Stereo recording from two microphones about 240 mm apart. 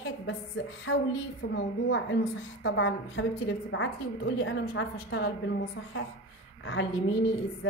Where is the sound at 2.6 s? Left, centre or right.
Left.